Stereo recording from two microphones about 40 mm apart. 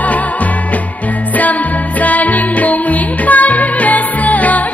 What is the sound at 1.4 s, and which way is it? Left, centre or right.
Music, left.